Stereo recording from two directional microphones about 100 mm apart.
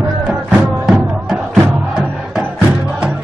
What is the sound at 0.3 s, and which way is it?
Music, 10° right (ahead or behind).